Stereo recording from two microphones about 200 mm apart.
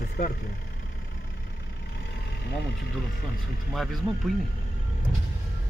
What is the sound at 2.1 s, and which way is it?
Speech, 55° left (ahead or behind).